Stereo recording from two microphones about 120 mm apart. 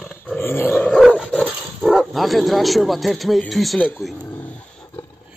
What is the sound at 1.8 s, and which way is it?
Speech, centre (ahead or behind).